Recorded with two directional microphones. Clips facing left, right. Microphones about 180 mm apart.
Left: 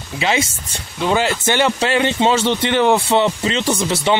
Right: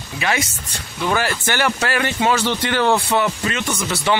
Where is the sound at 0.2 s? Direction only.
20° left (ahead or behind).